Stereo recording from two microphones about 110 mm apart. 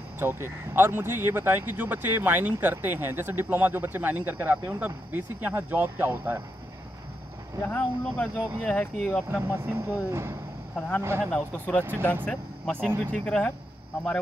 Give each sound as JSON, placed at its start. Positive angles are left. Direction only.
{"t": 0.2, "sound": "speech", "side_deg": -20}
{"t": 7.6, "sound": "speech", "side_deg": 15}
{"t": 9.5, "sound": "speech", "side_deg": -20}
{"t": 11.3, "sound": "speech", "side_deg": 15}
{"t": 11.8, "sound": "speech", "side_deg": -20}
{"t": 13.0, "sound": "speech", "side_deg": 10}